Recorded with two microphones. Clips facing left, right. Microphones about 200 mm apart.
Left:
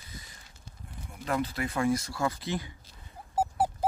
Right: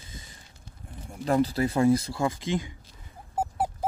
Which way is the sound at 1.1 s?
35° right (ahead or behind).